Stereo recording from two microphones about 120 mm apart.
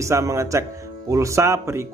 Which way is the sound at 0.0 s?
25° right (ahead or behind).